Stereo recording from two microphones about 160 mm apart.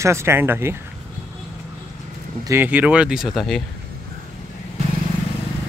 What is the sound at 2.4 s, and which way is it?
Speech, 15° right (ahead or behind).